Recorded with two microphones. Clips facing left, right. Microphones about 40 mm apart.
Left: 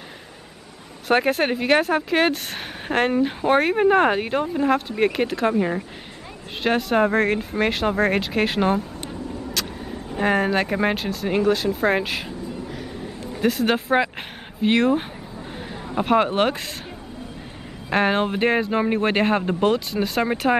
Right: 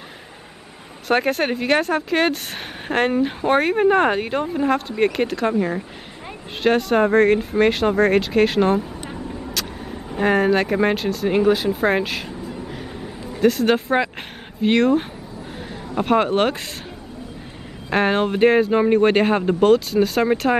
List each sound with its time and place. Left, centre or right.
1.0 s speech: centre
9.6 s vehicle: centre
10.1 s speech: centre
13.4 s speech: centre
17.8 s speech: centre